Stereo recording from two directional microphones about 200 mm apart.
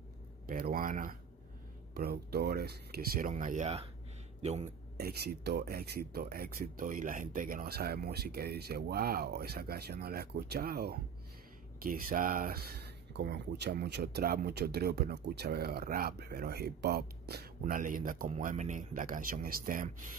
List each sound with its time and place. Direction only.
0.5 s speech: 45° right (ahead or behind)
4.9 s speech: 50° right (ahead or behind)